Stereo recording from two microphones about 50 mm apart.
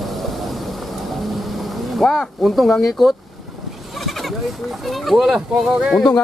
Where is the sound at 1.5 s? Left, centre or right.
Centre.